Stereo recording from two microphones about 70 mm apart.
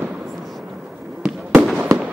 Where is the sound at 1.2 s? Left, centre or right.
Centre.